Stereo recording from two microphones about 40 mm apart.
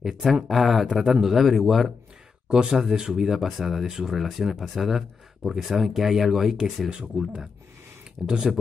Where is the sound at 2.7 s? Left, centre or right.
Centre.